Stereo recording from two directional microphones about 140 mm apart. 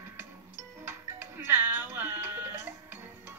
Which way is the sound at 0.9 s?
15° right (ahead or behind).